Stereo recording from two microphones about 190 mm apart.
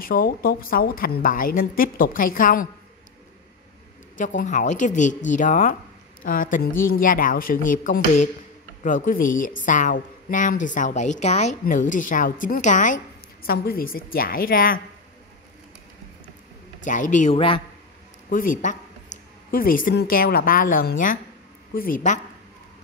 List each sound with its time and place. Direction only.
0.0 s a woman's voice: 50° left (ahead or behind)
4.2 s a woman's voice: 40° left (ahead or behind)
16.8 s speech: 40° left (ahead or behind)
18.3 s a woman's voice: 45° left (ahead or behind)
19.1 s a sound: 40° left (ahead or behind)
19.5 s a woman's voice: 45° left (ahead or behind)